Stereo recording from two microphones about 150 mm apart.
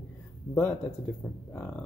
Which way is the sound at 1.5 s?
10° left (ahead or behind).